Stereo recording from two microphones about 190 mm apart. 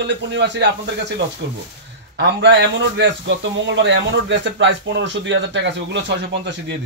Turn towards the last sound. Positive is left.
turn(degrees=-65)  # may be behind; listen again after turning